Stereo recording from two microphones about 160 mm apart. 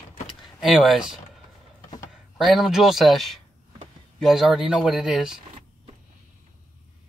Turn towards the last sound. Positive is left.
turn(degrees=-5)  # may be behind; listen again after turning